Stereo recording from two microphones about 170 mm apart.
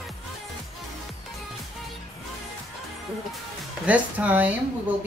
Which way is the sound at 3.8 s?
10° right (ahead or behind).